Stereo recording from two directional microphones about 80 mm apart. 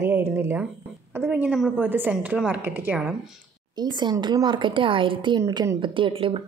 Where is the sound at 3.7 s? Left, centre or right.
Right.